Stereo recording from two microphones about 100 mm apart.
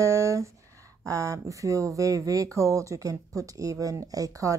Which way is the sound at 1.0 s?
35° right (ahead or behind).